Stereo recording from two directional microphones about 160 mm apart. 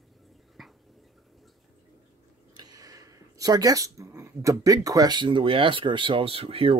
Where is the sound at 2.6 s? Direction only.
25° right (ahead or behind).